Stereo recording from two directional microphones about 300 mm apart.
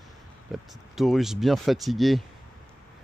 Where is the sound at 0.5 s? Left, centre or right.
Centre.